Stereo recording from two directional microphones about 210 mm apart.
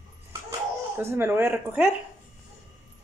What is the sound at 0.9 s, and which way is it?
Speech, 10° right (ahead or behind).